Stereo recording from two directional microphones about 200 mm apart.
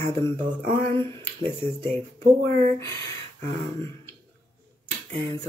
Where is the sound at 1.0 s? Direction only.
25° right (ahead or behind).